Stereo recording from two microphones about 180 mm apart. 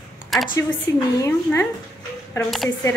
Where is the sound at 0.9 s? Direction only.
15° left (ahead or behind).